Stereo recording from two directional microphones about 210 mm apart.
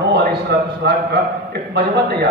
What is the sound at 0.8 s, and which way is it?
A man's voice, 50° right (ahead or behind).